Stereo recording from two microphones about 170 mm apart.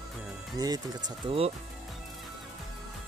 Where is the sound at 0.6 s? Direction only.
25° right (ahead or behind).